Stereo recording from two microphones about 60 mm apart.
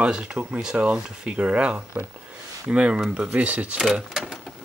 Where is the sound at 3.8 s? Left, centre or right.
Centre.